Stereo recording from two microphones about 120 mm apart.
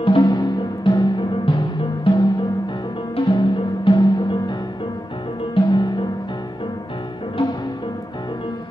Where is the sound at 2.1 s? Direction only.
50° left (ahead or behind).